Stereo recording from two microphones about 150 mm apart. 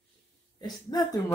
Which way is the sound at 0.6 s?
25° left (ahead or behind).